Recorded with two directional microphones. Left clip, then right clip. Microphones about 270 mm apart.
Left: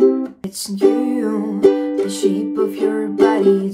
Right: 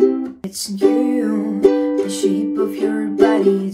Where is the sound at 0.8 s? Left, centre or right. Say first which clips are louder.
Even; centre.